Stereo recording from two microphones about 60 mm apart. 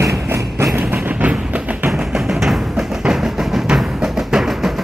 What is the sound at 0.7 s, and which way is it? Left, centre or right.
Train, right.